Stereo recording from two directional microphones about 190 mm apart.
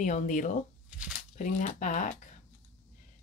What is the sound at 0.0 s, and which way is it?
Speech, 40° left (ahead or behind).